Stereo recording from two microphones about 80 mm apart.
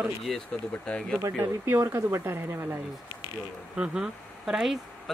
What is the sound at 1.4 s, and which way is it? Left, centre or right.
Speech, right.